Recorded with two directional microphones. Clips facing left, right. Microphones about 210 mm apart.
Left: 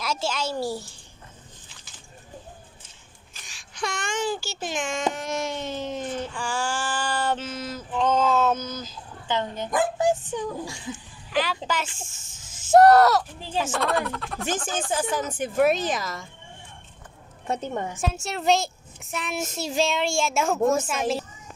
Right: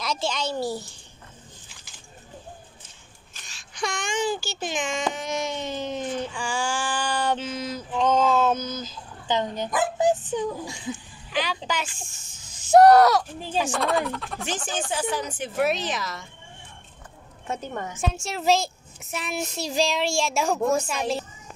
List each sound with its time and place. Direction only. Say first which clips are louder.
0.0 s a woman's voice: even; 5° left (ahead or behind)
3.7 s speech: right 1 dB; 5° left (ahead or behind)
5.1 s a sound: even; 5° left (ahead or behind)
9.3 s a child's voice: right 1 dB; 15° right (ahead or behind)
11.3 s a woman's voice: left 2 dB; centre (ahead or behind)
14.9 s speech: left 2 dB; 45° left (ahead or behind)
17.5 s a woman's voice: left 3 dB; 35° left (ahead or behind)
18.0 s a woman's voice: right 1 dB; 5° left (ahead or behind)